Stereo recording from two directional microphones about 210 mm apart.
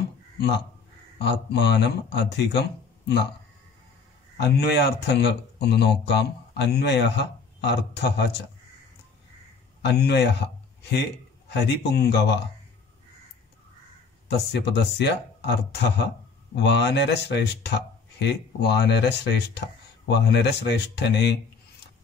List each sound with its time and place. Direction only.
1.1 s speech: 55° left (ahead or behind)
4.4 s speech: 50° left (ahead or behind)
9.8 s a man's voice: 50° left (ahead or behind)
14.5 s speech: 55° left (ahead or behind)